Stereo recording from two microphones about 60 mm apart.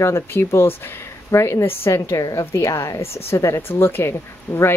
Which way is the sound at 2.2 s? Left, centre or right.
Left.